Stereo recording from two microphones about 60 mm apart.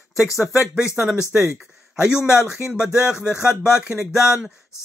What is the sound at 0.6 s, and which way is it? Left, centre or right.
Speech, centre.